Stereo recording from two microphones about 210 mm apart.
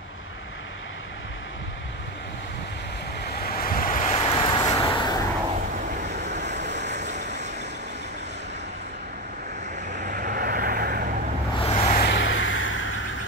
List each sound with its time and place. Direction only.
3.4 s vehicle: 45° left (ahead or behind); by 5.2 s 20° left (ahead or behind)
6.6 s vehicle: 55° right (ahead or behind)
7.1 s vehicle: 35° right (ahead or behind)
9.9 s vehicle: 35° right (ahead or behind)
11.5 s vehicle: 25° left (ahead or behind)
12.0 s vehicle: 60° left (ahead or behind)